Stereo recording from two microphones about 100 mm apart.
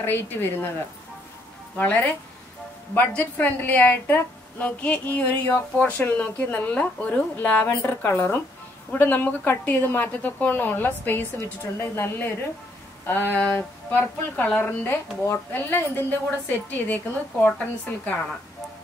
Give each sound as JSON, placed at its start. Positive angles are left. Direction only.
{"t": 0.0, "sound": "a woman's voice", "side_deg": 20}
{"t": 1.8, "sound": "a woman's voice", "side_deg": 15}
{"t": 14.9, "sound": "a woman's voice", "side_deg": 25}